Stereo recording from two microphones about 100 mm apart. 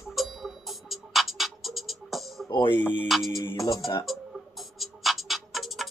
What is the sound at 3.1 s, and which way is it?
Music, centre (ahead or behind).